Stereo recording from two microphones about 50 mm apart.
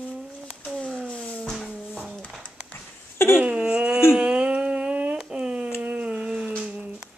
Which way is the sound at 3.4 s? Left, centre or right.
Right.